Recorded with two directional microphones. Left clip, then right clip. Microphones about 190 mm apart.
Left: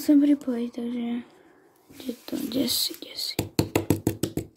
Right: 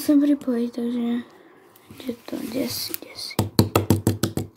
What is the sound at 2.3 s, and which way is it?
Speech, 20° left (ahead or behind).